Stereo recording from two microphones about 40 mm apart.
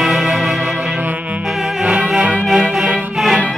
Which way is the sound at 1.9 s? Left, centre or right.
Right.